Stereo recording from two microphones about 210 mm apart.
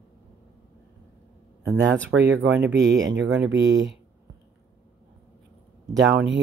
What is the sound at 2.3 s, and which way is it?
Speech, 55° right (ahead or behind).